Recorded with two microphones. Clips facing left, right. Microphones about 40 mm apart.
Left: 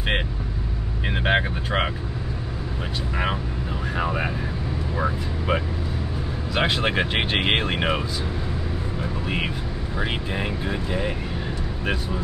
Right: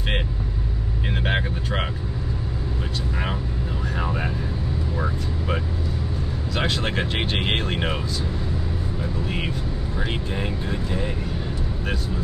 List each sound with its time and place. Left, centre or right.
1.1 s speech: centre
3.9 s speech: centre
9.9 s speech: centre